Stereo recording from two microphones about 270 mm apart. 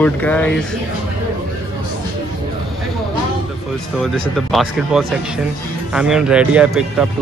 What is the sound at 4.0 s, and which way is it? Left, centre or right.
Speech, centre.